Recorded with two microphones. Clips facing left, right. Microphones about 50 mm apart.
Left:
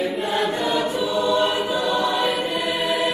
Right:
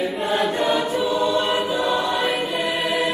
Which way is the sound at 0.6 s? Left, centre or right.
Right.